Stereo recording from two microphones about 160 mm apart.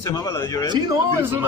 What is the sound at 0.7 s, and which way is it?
Speech, 25° right (ahead or behind).